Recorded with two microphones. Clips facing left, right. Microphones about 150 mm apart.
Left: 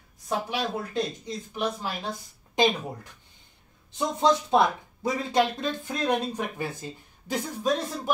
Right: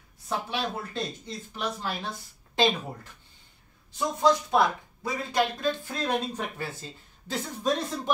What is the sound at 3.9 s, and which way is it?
Speech, 20° left (ahead or behind).